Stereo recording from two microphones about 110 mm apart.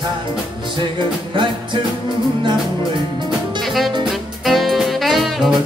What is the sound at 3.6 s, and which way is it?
Saxophone, centre (ahead or behind).